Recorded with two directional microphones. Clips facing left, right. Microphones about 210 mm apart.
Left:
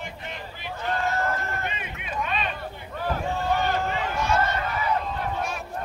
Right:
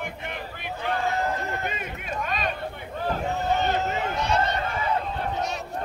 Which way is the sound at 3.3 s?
20° right (ahead or behind).